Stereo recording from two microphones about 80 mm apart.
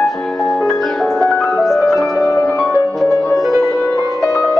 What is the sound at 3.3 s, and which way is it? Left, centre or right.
Music, centre.